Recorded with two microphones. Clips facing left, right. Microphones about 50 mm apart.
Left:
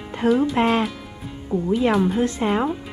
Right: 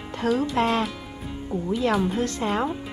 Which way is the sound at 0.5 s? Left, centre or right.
Centre.